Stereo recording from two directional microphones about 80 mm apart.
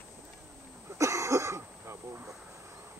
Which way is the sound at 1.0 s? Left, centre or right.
Right.